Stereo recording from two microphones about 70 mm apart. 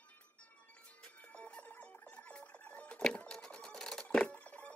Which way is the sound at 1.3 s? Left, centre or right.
Centre.